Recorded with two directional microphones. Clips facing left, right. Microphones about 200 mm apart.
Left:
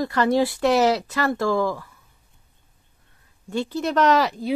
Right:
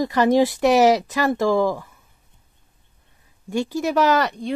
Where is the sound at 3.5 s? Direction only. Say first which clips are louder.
Right 2 dB; 10° right (ahead or behind).